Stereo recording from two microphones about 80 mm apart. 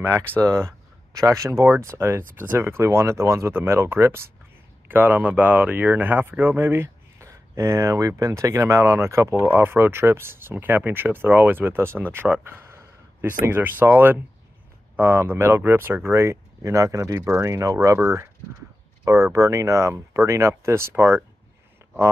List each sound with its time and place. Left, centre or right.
0.4 s speech: right
9.4 s speech: right
19.3 s speech: right